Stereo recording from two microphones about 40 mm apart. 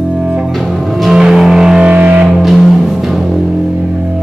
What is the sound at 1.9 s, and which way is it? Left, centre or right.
Music, right.